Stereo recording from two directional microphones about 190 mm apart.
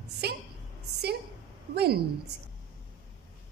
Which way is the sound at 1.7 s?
60° right (ahead or behind).